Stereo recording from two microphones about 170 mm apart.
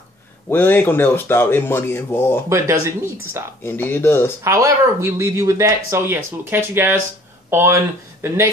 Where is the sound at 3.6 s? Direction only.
10° left (ahead or behind).